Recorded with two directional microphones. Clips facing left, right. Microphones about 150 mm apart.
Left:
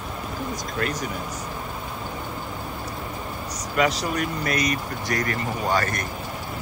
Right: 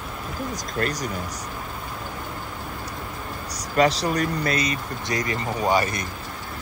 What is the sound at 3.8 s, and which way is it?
Speech, 35° right (ahead or behind).